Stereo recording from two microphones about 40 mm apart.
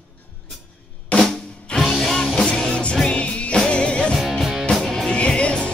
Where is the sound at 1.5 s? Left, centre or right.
Left.